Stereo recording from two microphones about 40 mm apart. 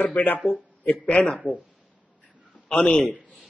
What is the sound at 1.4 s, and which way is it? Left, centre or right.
Speech, left.